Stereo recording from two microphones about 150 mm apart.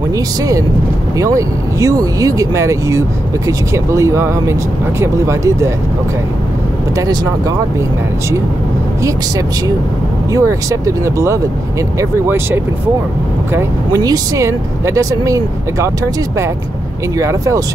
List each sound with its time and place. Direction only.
1.2 s speech: 20° right (ahead or behind)
10.3 s speech: 20° right (ahead or behind)
13.6 s speech: 25° right (ahead or behind)
17.2 s speech: 20° right (ahead or behind)